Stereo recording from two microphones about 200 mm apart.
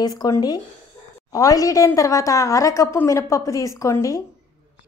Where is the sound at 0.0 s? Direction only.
20° left (ahead or behind).